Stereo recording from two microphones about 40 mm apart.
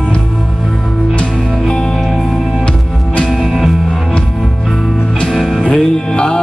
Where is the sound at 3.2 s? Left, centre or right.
Centre.